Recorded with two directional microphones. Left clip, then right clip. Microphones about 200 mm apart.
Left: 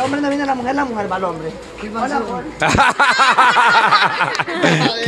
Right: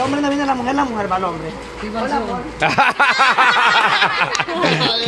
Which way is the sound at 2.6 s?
20° left (ahead or behind).